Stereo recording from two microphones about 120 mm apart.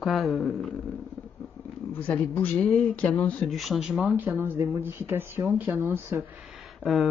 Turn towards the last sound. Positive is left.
turn(degrees=0)  # may be behind; listen again after turning